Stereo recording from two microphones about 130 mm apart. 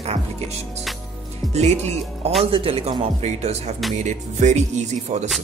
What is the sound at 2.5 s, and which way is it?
Speech, 50° right (ahead or behind).